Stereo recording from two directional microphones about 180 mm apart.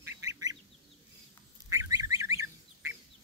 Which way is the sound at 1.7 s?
20° right (ahead or behind).